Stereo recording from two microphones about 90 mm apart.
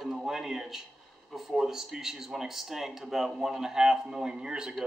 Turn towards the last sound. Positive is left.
turn(degrees=-5)  # may be behind; listen again after turning